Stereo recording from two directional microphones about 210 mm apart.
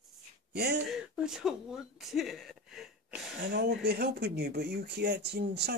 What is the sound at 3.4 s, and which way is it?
Speech, 50° right (ahead or behind).